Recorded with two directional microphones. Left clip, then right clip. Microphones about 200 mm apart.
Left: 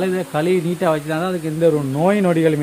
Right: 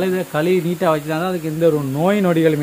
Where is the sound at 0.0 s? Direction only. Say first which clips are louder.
Right 1 dB; centre (ahead or behind).